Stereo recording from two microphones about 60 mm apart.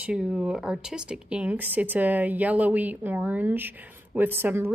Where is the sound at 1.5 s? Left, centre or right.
Right.